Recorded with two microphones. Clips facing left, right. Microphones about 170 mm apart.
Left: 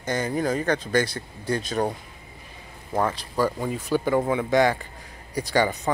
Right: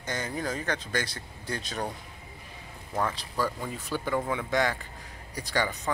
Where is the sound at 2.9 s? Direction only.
35° left (ahead or behind).